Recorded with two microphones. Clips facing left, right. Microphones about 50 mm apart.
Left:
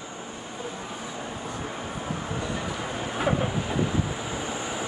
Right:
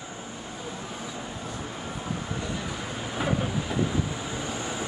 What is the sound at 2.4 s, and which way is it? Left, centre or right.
Vehicle, centre.